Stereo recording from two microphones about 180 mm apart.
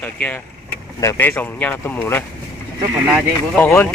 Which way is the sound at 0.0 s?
10° left (ahead or behind).